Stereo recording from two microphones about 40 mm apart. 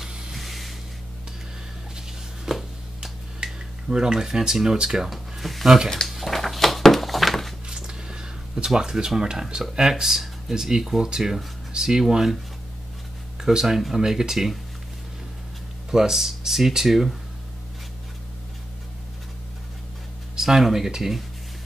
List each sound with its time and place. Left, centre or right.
0.3 s music: centre
2.5 s a sound: centre
3.5 s speech: centre
5.1 s a sound: centre
7.6 s speech: centre
13.4 s speech: centre
15.9 s speech: centre
20.3 s speech: centre